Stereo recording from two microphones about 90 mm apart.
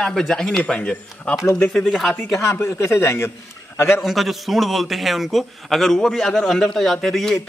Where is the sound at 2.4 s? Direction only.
30° left (ahead or behind).